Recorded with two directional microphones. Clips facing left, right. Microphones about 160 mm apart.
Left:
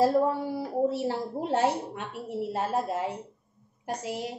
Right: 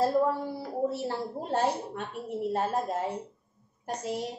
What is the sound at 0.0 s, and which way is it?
A woman's voice, 10° left (ahead or behind).